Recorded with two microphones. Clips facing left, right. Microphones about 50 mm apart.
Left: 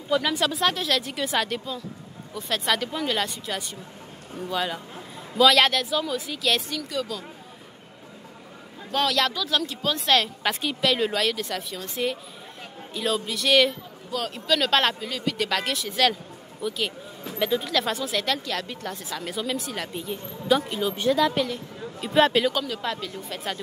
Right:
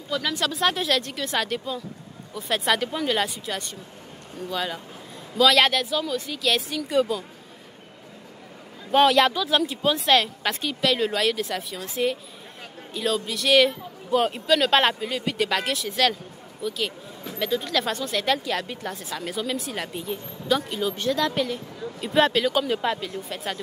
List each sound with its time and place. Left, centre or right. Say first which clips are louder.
0.1 s a woman's voice: left 3 dB; centre
7.1 s speech: right 5 dB; centre
8.9 s speech: right 6 dB; right
9.9 s a woman's voice: even; centre
14.1 s speech: right 8 dB; right
14.5 s speech: right 1 dB; centre
15.3 s a woman's voice: right 2 dB; centre
22.7 s speech: right 5 dB; centre